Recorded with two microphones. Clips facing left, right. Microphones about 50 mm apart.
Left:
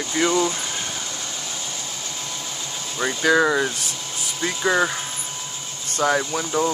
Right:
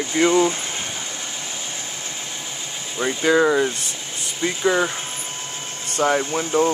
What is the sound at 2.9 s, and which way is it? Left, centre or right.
Speech, centre.